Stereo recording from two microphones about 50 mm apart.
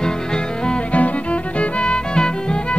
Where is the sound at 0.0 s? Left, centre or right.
Centre.